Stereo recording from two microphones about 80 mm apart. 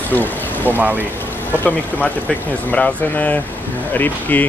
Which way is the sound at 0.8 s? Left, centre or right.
Right.